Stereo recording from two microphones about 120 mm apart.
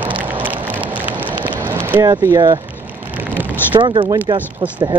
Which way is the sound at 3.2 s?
15° right (ahead or behind).